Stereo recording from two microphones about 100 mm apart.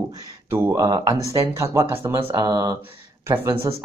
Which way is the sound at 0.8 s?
35° right (ahead or behind).